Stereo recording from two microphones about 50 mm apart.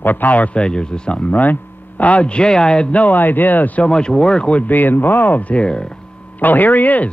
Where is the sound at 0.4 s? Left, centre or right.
Left.